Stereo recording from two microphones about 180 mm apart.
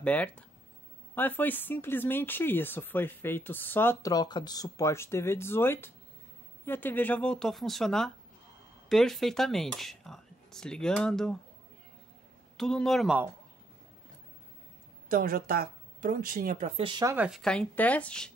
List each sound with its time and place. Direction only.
0.0 s speech: 5° left (ahead or behind)
12.5 s speech: 5° left (ahead or behind)
15.0 s speech: 55° right (ahead or behind); by 17.1 s 25° right (ahead or behind)
17.1 s speech: 10° right (ahead or behind)
17.4 s speech: 5° left (ahead or behind)